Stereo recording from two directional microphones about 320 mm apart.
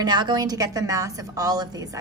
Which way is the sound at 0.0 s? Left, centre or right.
Centre.